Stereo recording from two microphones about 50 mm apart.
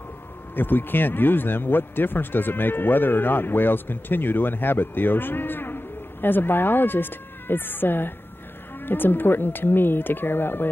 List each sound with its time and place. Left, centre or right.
0.6 s speech: left